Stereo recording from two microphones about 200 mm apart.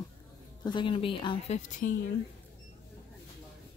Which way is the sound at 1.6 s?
35° left (ahead or behind).